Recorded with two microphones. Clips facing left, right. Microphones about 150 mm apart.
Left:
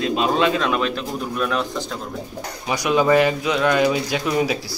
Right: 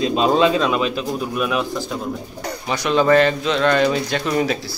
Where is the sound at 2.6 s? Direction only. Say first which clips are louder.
Right 1 dB; 15° left (ahead or behind).